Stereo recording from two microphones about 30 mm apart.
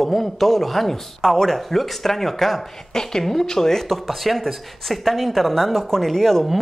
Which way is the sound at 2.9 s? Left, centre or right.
Centre.